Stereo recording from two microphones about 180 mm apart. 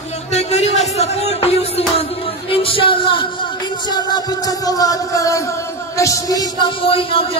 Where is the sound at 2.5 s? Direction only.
30° left (ahead or behind).